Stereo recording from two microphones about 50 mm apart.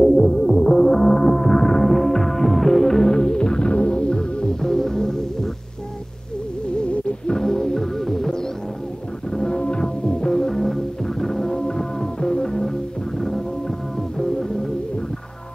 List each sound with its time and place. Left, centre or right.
0.0 s music: centre
6.8 s music: left